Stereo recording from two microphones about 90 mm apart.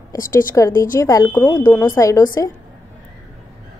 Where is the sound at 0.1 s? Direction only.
35° left (ahead or behind).